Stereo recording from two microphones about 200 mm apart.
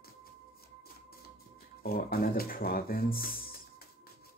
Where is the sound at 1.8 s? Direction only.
50° left (ahead or behind).